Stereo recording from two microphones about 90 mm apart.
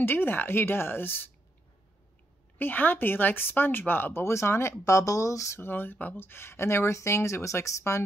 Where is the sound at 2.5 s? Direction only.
20° left (ahead or behind).